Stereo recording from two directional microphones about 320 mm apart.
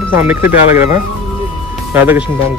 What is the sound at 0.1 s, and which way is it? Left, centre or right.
Speech, centre.